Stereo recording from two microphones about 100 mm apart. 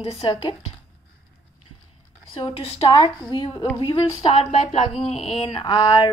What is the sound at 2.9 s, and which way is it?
A woman's voice, 50° left (ahead or behind).